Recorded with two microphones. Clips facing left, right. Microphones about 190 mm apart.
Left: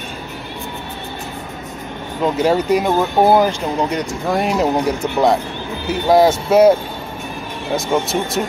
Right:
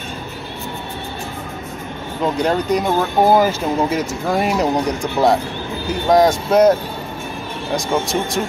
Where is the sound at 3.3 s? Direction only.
5° right (ahead or behind).